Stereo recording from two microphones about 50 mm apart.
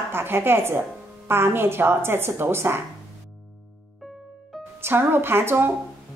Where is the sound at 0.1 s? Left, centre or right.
Right.